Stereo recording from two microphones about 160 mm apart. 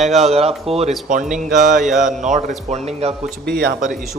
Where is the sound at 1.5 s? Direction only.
55° right (ahead or behind).